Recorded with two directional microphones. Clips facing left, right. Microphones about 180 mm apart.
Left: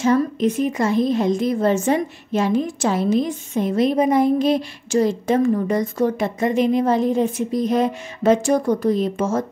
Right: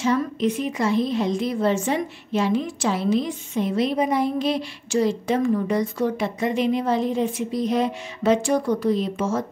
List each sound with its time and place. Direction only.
0.0 s a woman's voice: 45° left (ahead or behind)